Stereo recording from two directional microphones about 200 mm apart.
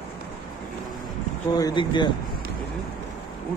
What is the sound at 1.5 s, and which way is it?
Speech, 20° left (ahead or behind).